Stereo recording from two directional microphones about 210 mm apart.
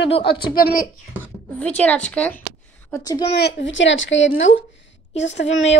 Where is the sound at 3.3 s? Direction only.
55° left (ahead or behind).